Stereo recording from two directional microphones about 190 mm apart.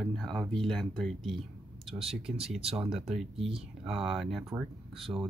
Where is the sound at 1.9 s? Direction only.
30° right (ahead or behind).